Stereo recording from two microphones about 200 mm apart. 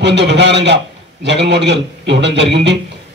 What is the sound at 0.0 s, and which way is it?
A man's voice, 60° right (ahead or behind).